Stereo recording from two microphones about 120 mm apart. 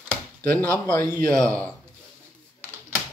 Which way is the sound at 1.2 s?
5° left (ahead or behind).